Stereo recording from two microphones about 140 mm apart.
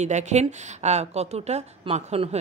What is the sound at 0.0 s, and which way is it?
A woman's voice, 55° right (ahead or behind).